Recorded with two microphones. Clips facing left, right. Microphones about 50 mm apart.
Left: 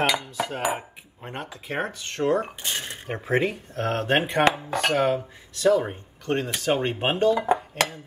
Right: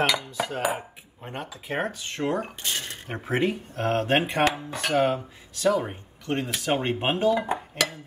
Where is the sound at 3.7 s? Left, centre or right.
Centre.